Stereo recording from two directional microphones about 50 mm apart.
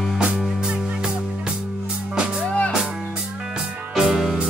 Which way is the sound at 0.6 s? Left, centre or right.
Centre.